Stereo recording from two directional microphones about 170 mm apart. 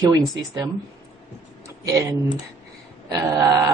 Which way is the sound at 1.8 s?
15° right (ahead or behind).